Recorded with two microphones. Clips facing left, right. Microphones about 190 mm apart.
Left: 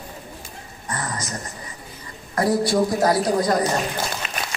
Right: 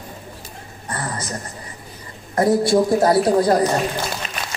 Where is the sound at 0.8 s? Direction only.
30° right (ahead or behind).